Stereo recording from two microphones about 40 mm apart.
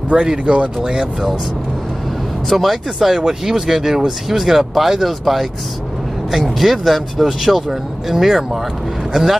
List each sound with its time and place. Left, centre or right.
0.1 s speech: right
2.5 s speech: centre